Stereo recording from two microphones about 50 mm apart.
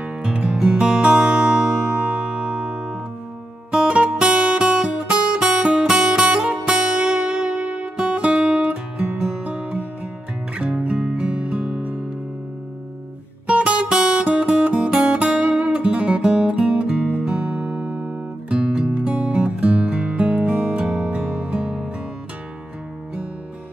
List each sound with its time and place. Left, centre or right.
0.0 s music: centre
4.3 s music: right
4.6 s guitar: right
6.2 s music: centre
7.8 s music: centre
13.5 s music: right
17.6 s music: right
18.5 s music: centre